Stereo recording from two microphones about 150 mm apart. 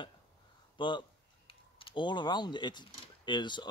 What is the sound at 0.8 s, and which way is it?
Typing, 30° left (ahead or behind).